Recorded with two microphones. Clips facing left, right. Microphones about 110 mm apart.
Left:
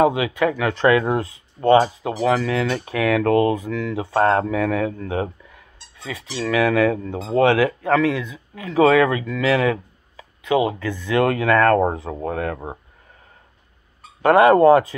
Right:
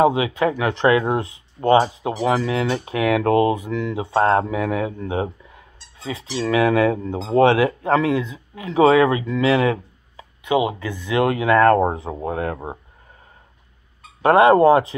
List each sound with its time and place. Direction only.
0.0 s speech: 25° right (ahead or behind)
14.2 s speech: 25° right (ahead or behind)